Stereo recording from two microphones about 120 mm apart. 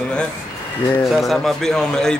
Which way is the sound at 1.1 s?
Centre (ahead or behind).